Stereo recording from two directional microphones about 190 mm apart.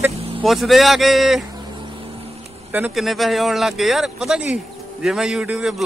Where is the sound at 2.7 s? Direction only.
5° right (ahead or behind).